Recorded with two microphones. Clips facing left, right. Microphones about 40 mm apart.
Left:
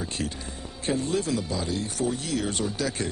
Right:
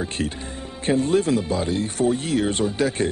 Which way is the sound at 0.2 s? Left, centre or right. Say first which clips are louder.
Right 5 dB; right.